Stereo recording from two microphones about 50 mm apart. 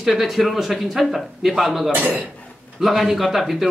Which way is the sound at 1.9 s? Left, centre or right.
Right.